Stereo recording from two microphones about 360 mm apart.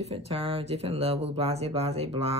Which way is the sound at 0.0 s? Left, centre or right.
Centre.